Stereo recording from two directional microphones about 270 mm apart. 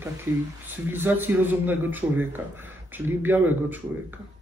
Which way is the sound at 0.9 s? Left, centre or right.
Centre.